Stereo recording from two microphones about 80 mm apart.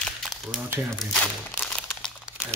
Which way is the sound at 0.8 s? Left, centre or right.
Centre.